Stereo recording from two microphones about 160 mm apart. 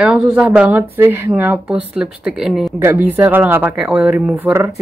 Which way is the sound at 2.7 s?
15° right (ahead or behind).